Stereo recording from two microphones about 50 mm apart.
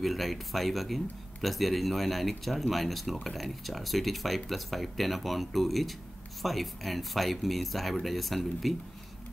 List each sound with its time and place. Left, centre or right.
0.0 s speech: centre